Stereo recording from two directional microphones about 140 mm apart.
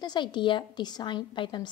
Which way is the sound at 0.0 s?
30° left (ahead or behind).